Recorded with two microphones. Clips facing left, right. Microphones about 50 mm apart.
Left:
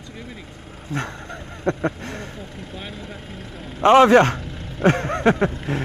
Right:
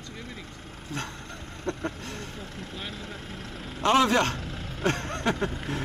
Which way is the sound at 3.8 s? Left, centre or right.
Left.